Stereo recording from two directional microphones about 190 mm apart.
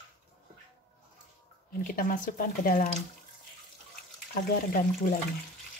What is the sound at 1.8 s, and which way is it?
Speech, 45° left (ahead or behind).